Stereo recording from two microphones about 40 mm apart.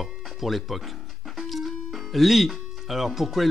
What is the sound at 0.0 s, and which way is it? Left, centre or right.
Music, centre.